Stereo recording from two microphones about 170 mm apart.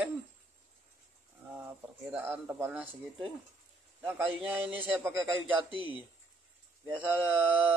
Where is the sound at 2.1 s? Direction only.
10° right (ahead or behind).